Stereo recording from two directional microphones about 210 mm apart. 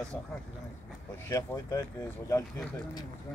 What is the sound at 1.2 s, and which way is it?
Speech, 15° left (ahead or behind).